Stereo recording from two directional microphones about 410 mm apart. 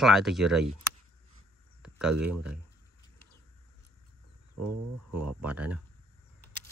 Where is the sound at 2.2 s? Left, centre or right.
Centre.